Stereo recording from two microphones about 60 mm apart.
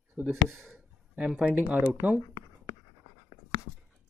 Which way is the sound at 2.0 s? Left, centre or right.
Right.